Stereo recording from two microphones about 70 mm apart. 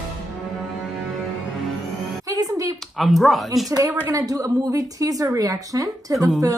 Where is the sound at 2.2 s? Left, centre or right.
Right.